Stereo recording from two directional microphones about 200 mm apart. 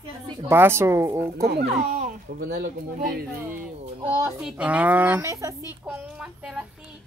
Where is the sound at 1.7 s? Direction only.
40° right (ahead or behind).